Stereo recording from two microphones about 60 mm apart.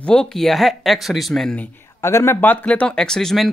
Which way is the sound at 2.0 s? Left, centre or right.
Left.